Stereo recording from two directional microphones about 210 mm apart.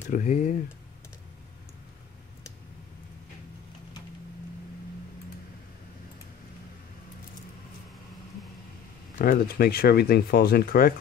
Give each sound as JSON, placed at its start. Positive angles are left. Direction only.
{"t": 0.1, "sound": "speech", "side_deg": 35}
{"t": 9.2, "sound": "speech", "side_deg": 45}